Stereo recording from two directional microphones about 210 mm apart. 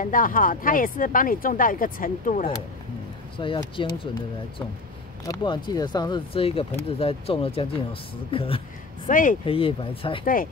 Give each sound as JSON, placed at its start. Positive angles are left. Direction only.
{"t": 0.0, "sound": "speech", "side_deg": 40}
{"t": 3.3, "sound": "speech", "side_deg": 25}
{"t": 5.3, "sound": "speech", "side_deg": 20}
{"t": 9.1, "sound": "speech", "side_deg": 40}
{"t": 9.4, "sound": "speech", "side_deg": 25}
{"t": 10.2, "sound": "speech", "side_deg": 40}